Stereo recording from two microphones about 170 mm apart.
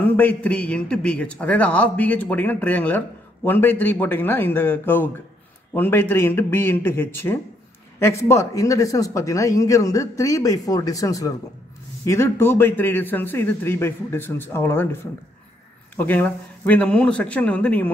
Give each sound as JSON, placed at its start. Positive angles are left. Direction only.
{"t": 0.1, "sound": "a man's voice", "side_deg": 10}
{"t": 16.0, "sound": "a man's voice", "side_deg": 10}